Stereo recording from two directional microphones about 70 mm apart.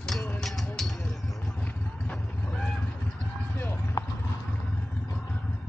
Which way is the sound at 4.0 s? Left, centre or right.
Left.